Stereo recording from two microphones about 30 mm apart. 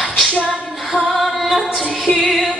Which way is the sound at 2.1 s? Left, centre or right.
Left.